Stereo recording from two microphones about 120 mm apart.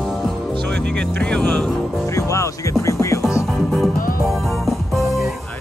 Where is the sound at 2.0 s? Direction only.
25° left (ahead or behind).